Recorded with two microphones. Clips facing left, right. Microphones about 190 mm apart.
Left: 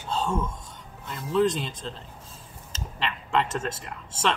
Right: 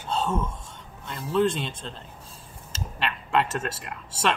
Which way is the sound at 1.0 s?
Centre (ahead or behind).